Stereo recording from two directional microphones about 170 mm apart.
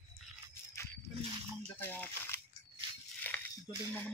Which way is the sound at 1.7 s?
10° left (ahead or behind).